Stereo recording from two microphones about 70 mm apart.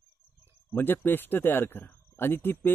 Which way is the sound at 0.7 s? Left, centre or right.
Left.